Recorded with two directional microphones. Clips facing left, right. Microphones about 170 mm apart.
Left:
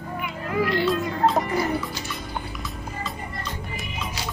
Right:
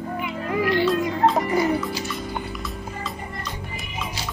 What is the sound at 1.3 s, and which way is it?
Music, centre (ahead or behind).